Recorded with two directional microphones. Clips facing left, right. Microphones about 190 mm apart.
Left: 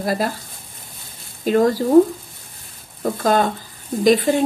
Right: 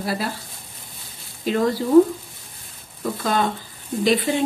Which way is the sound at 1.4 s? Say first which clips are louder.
Left 5 dB; 45° left (ahead or behind).